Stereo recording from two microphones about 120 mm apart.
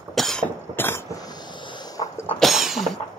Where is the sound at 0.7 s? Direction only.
20° left (ahead or behind).